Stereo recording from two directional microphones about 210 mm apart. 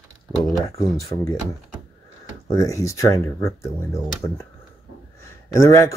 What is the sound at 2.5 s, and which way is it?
Speech, 15° left (ahead or behind).